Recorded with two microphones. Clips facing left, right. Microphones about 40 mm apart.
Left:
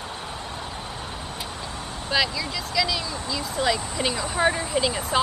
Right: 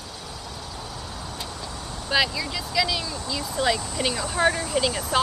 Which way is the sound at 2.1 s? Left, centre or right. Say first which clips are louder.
Right 1 dB; centre.